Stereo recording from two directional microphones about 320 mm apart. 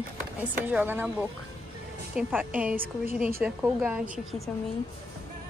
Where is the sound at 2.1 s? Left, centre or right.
Centre.